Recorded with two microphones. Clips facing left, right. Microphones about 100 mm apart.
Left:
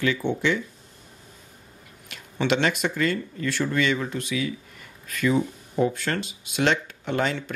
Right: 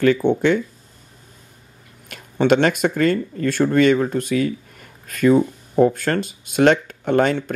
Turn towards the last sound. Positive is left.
turn(degrees=-50)  # may be behind; listen again after turning